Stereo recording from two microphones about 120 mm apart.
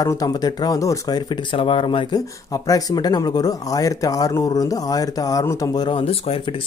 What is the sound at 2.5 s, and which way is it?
Speech, 30° left (ahead or behind).